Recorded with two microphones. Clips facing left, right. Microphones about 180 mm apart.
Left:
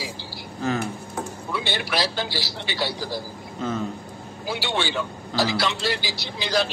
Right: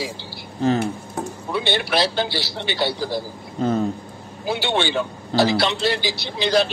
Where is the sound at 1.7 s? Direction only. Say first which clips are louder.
Right 5 dB; 25° right (ahead or behind).